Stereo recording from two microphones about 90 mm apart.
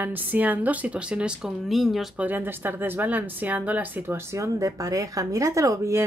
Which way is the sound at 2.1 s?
20° right (ahead or behind).